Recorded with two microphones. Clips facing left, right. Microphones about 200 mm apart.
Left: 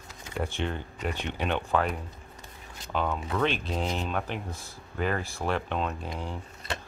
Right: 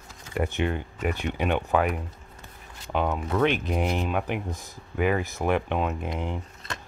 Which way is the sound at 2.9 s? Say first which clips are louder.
Right 4 dB; 10° right (ahead or behind).